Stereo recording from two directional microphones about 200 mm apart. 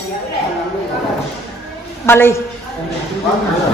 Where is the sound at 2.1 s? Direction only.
10° left (ahead or behind).